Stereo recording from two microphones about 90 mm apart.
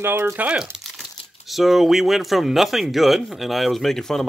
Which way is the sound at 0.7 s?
Centre (ahead or behind).